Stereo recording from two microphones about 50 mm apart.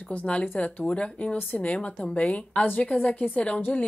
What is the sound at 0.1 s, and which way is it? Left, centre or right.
A woman's voice, left.